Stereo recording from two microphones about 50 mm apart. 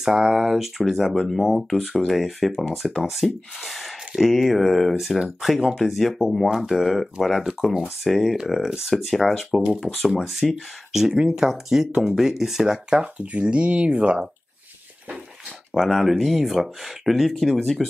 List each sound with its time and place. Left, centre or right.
0.0 s speech: centre
9.1 s speech: centre
13.0 s speech: right
15.7 s speech: centre